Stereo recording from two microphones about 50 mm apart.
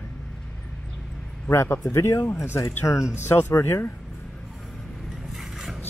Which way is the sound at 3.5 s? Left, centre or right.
Left.